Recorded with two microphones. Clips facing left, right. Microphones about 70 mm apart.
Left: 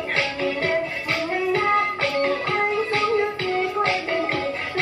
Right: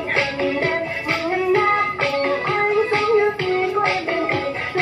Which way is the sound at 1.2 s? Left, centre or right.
Right.